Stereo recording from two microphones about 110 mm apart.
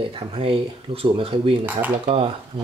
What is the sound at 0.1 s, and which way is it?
Speech, 50° right (ahead or behind).